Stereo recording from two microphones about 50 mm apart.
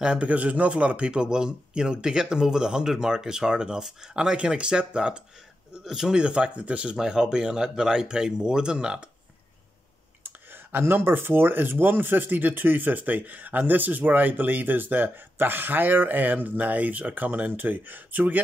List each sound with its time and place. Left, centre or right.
0.0 s speech: centre
0.3 s speech: right
7.0 s speech: centre
10.2 s speech: right